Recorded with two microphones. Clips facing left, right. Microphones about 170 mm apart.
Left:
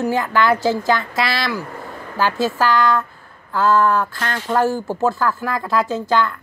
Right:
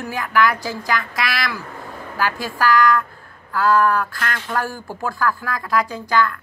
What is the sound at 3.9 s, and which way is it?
Speech, 20° left (ahead or behind).